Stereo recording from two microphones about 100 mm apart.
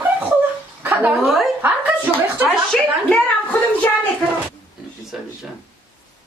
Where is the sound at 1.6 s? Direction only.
20° right (ahead or behind).